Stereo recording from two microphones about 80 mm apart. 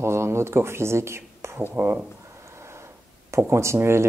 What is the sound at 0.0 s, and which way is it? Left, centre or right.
Speech, right.